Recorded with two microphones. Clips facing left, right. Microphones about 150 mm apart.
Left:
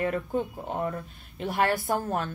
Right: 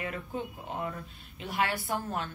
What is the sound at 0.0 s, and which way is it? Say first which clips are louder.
Speech: left 8 dB; 45° left (ahead or behind).